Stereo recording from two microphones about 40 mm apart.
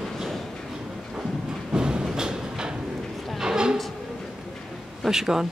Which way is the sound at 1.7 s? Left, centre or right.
Centre.